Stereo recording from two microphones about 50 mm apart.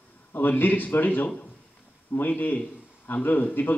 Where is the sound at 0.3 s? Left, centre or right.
Left.